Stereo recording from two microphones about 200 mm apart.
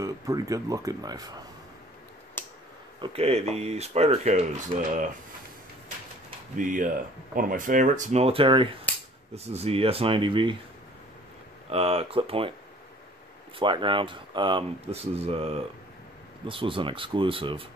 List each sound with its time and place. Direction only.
0.0 s speech: 15° right (ahead or behind)
2.4 s a sound: 10° left (ahead or behind)
3.0 s speech: 30° right (ahead or behind)
6.5 s speech: 40° right (ahead or behind); by 10.5 s 25° right (ahead or behind)
11.7 s speech: 30° right (ahead or behind)
13.6 s speech: 25° right (ahead or behind)